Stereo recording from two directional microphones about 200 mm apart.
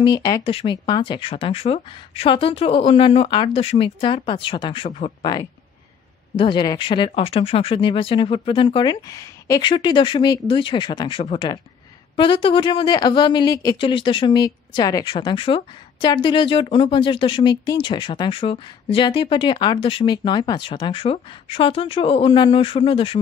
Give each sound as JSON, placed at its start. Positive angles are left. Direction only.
{"t": 0.0, "sound": "speech", "side_deg": 20}
{"t": 5.2, "sound": "speech", "side_deg": 20}